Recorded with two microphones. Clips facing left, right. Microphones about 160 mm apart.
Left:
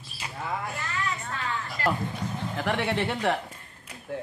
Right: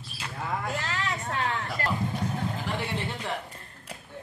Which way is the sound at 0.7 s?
90° right.